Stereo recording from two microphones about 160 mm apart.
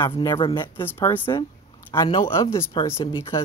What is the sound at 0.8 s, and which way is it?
Speech, 10° left (ahead or behind).